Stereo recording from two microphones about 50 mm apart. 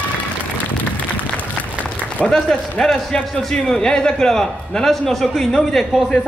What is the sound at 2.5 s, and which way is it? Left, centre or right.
A man's voice, centre.